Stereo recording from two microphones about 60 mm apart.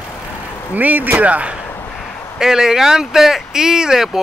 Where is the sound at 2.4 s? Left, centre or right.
Centre.